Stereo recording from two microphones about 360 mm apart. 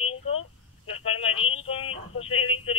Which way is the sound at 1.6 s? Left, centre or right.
Centre.